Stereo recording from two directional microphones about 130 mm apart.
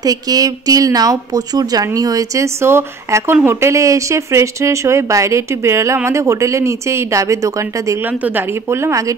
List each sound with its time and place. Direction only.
0.0 s speech: 30° right (ahead or behind)
8.1 s speech: 15° right (ahead or behind)